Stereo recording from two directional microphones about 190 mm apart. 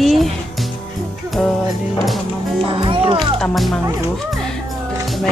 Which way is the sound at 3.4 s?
Centre (ahead or behind).